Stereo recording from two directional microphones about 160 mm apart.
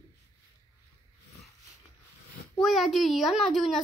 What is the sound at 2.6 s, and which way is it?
A child's voice, centre (ahead or behind).